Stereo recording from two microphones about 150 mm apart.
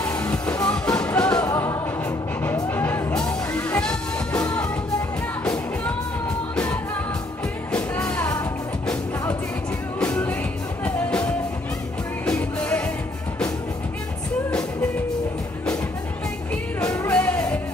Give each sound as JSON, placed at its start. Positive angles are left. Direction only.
{"t": 0.0, "sound": "music", "side_deg": 10}
{"t": 1.4, "sound": "music", "side_deg": 20}
{"t": 7.7, "sound": "music", "side_deg": 5}
{"t": 9.9, "sound": "music", "side_deg": 10}
{"t": 17.1, "sound": "music", "side_deg": 5}